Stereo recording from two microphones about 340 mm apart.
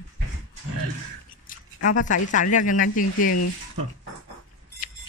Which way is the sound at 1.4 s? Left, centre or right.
Left.